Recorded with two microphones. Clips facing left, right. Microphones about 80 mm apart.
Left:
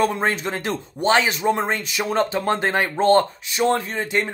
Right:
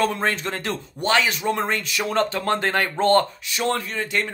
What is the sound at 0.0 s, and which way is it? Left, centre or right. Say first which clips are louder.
Speech: left 2 dB; left.